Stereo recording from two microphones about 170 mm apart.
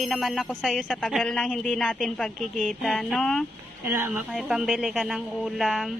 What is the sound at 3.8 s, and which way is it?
Music, 10° right (ahead or behind).